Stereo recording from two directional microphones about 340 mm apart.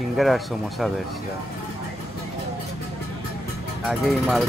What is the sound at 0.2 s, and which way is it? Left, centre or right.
Speech, centre.